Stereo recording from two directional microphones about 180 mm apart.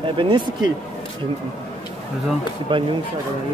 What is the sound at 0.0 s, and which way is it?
Speech, 25° right (ahead or behind).